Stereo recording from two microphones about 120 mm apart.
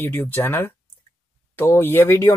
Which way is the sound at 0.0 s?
15° left (ahead or behind).